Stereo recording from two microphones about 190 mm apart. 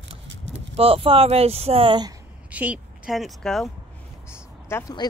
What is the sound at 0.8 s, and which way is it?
Speech, 30° right (ahead or behind).